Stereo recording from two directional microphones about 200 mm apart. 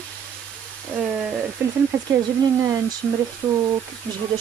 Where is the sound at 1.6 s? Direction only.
15° right (ahead or behind).